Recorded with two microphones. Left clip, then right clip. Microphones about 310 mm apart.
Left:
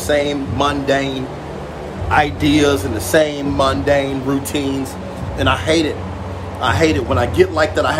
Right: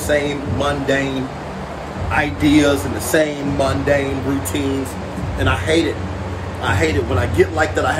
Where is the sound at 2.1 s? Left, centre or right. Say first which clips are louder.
Left 1 dB; centre.